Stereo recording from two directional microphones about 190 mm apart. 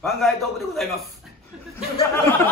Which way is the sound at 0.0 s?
Centre (ahead or behind).